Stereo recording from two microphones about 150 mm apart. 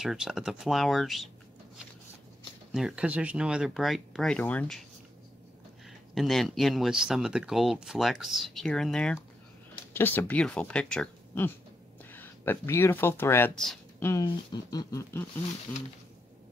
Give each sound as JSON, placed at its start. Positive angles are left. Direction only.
{"t": 0.0, "sound": "speech", "side_deg": -5}
{"t": 2.7, "sound": "speech", "side_deg": -5}
{"t": 6.1, "sound": "speech", "side_deg": 0}
{"t": 14.2, "sound": "speech", "side_deg": 30}